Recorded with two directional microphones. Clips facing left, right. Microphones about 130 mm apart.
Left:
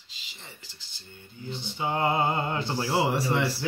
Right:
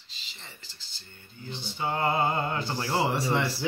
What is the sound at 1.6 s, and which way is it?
Speech, 15° left (ahead or behind).